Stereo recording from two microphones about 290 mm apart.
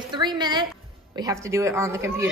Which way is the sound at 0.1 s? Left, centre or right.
Centre.